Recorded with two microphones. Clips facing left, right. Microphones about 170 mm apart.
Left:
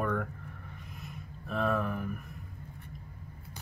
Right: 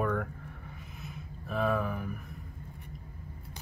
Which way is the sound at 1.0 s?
Centre (ahead or behind).